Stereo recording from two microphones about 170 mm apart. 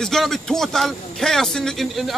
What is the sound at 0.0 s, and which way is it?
Speech, centre (ahead or behind).